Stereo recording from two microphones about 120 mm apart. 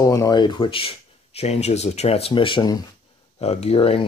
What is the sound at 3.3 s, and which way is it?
Speech, 60° left (ahead or behind).